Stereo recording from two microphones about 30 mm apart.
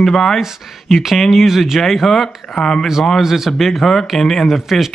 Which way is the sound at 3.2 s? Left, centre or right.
Centre.